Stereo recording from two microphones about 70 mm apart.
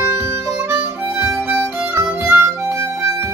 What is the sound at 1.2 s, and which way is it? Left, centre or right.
Harmonica, right.